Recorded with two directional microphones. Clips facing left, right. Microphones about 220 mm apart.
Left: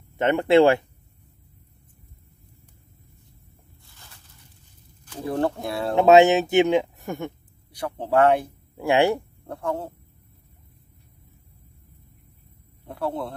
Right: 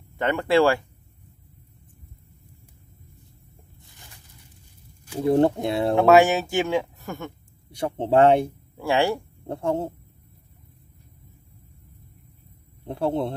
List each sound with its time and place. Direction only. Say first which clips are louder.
0.2 s speech: left 3 dB; 20° left (ahead or behind)
3.8 s a sound: right 1 dB; 15° right (ahead or behind)
5.2 s speech: right 6 dB; 25° right (ahead or behind)
5.9 s speech: left 3 dB; 20° left (ahead or behind)
7.7 s speech: right 2 dB; 25° right (ahead or behind)
8.7 s speech: left 3 dB; 20° left (ahead or behind)
9.5 s speech: right 3 dB; 25° right (ahead or behind)
12.8 s speech: right 4 dB; 25° right (ahead or behind)